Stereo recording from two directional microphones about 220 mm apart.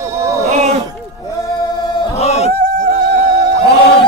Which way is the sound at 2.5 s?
40° right (ahead or behind).